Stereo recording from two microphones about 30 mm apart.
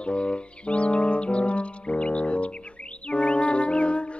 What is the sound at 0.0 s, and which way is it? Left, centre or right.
Music, left.